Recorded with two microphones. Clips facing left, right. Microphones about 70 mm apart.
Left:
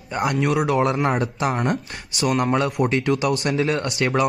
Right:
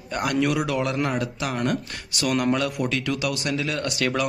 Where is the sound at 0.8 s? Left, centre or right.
Left.